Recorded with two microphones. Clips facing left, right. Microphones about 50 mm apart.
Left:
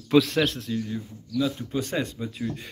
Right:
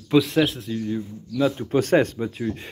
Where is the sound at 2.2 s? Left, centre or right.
Right.